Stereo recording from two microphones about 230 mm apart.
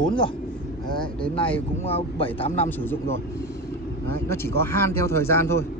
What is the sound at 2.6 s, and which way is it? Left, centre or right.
Speech, centre.